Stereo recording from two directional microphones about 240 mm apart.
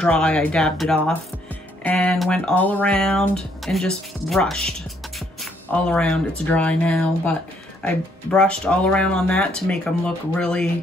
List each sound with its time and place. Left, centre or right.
0.0 s speech: centre